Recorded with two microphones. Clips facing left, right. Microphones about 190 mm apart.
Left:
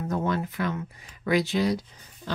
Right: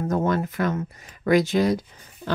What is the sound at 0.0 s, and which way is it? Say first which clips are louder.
Speech: right 4 dB; 45° right (ahead or behind).